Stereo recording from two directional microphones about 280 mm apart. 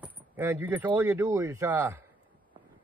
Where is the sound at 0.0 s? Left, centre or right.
Centre.